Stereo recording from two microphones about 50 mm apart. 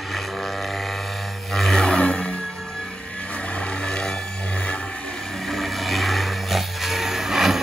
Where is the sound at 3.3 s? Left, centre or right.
Left.